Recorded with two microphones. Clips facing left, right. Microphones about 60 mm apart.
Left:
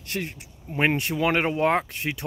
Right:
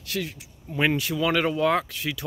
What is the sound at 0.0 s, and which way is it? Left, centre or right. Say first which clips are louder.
Speech: right 1 dB; left.